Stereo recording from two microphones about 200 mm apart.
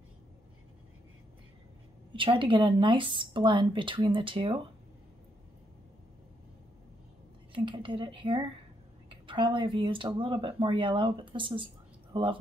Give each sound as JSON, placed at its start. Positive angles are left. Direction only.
{"t": 2.1, "sound": "speech", "side_deg": -25}
{"t": 7.5, "sound": "speech", "side_deg": -25}